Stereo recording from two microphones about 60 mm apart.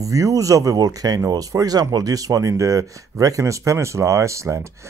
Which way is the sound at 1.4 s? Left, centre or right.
Right.